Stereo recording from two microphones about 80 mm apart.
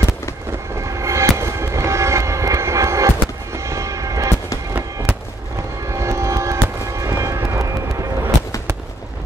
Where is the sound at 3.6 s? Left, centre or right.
Right.